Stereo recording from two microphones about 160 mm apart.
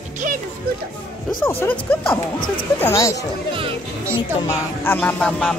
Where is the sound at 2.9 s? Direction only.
20° left (ahead or behind).